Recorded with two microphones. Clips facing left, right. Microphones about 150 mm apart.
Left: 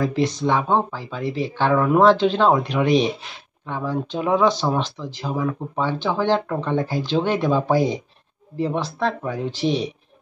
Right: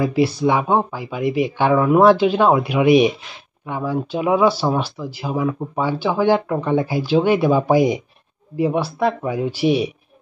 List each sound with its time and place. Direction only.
0.0 s speech: 10° right (ahead or behind)